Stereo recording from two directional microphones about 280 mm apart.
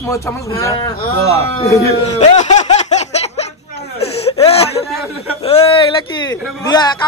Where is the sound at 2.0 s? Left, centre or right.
Left.